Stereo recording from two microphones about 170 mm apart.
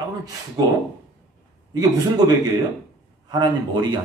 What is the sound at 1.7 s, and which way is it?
A man's voice, 20° right (ahead or behind).